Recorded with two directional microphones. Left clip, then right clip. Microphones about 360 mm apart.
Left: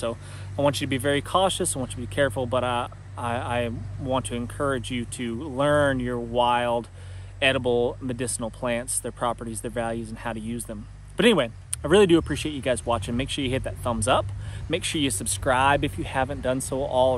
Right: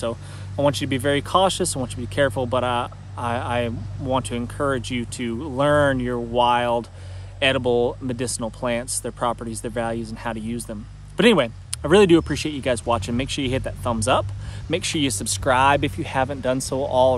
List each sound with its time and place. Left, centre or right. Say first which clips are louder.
0.0 s speech: right 3 dB; centre